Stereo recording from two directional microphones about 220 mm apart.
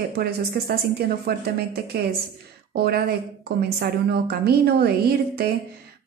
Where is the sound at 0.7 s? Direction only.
45° right (ahead or behind).